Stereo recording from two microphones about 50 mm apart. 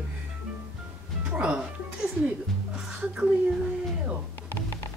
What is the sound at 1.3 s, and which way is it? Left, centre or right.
Music, right.